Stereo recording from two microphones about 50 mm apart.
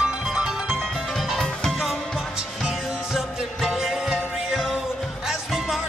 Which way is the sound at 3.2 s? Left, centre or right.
Centre.